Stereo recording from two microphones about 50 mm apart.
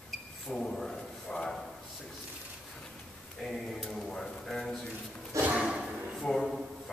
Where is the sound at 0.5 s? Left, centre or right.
Centre.